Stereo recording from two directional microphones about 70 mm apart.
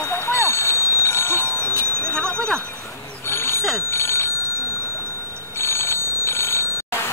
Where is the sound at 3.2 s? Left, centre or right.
Left.